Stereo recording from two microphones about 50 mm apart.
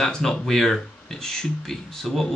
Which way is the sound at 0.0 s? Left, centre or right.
Centre.